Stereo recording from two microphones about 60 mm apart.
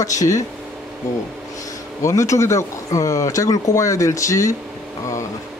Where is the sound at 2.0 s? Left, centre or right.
Left.